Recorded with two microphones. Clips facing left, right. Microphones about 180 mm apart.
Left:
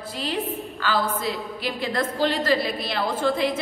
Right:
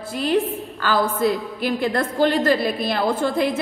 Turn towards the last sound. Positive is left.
turn(degrees=-45)  # may be behind; listen again after turning